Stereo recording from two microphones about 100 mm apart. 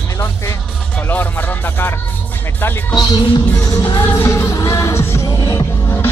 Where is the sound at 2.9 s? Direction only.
45° left (ahead or behind).